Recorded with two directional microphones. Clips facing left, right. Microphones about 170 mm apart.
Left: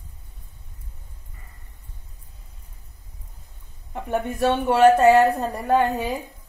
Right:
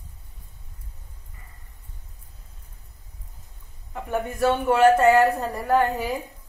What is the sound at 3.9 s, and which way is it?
A woman's voice, 20° left (ahead or behind).